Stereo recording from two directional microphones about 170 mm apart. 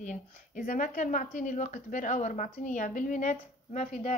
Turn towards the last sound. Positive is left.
turn(degrees=45)  # may be behind; listen again after turning